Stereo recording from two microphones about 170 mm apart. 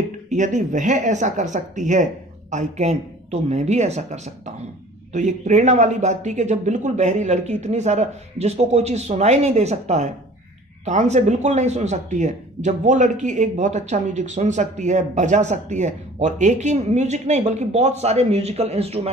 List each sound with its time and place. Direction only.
0.3 s a woman's voice: 45° right (ahead or behind)